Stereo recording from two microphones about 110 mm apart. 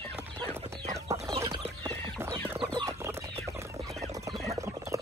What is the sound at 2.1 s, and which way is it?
Chicken, 25° right (ahead or behind).